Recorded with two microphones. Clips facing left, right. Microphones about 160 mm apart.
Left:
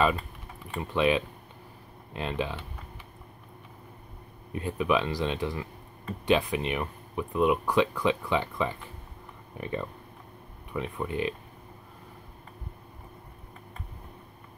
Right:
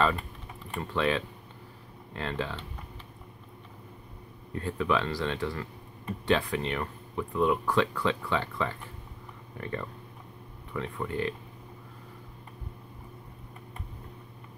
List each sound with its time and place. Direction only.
0.7 s speech: 15° left (ahead or behind)
4.5 s speech: 15° left (ahead or behind)